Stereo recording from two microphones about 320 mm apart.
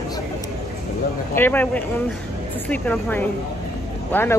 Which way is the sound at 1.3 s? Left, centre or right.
Centre.